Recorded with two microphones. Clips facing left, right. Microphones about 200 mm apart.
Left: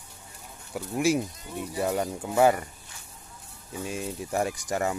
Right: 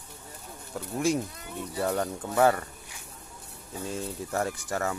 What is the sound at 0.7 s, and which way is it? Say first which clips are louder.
Speech: left 2 dB; 10° left (ahead or behind).